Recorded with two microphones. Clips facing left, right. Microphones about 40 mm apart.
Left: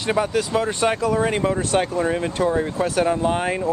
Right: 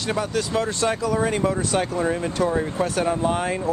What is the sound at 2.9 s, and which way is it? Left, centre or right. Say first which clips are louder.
Speech: left 3 dB; centre.